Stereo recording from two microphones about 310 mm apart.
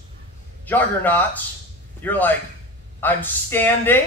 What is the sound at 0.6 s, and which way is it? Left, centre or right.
Speech, centre.